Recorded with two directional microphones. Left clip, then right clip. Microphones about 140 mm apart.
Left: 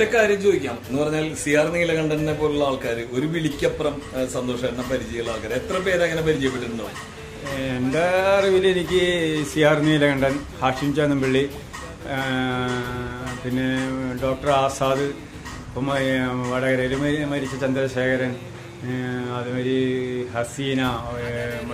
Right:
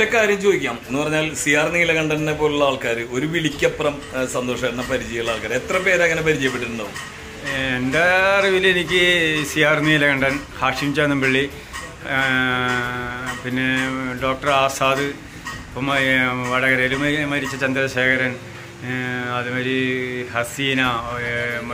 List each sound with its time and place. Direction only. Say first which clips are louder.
0.0 s a man's voice: right 1 dB; 30° right (ahead or behind)
7.5 s speech: right 4 dB; 10° left (ahead or behind)